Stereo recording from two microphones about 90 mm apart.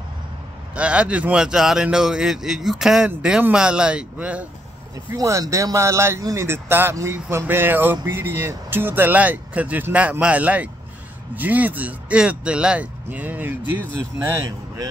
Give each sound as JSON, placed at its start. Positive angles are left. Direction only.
{"t": 0.7, "sound": "speech", "side_deg": -10}
{"t": 5.1, "sound": "speech", "side_deg": -40}